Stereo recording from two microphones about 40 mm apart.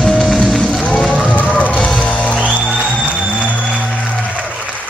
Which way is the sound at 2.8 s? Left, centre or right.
Right.